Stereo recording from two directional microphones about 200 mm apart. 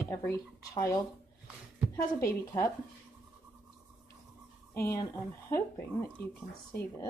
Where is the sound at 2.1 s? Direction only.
15° left (ahead or behind).